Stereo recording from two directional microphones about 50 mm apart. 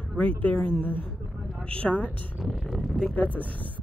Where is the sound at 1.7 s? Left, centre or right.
Left.